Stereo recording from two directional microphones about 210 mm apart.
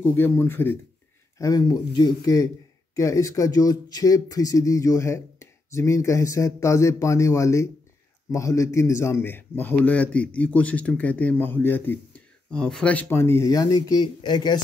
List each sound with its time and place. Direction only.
0.0 s speech: 10° left (ahead or behind)